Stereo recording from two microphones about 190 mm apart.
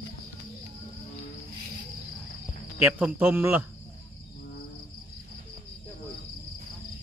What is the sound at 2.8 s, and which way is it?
Speech, 5° right (ahead or behind).